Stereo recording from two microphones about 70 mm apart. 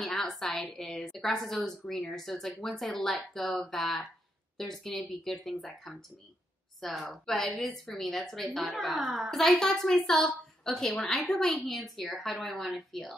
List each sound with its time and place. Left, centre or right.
0.0 s a woman's voice: centre
3.5 s speech: centre
4.6 s a woman's voice: centre